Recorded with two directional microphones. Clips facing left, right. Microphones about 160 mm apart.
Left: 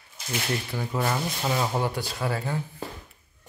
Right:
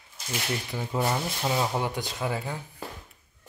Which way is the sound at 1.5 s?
5° right (ahead or behind).